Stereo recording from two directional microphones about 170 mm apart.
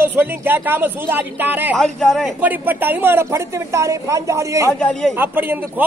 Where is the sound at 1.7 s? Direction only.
5° left (ahead or behind).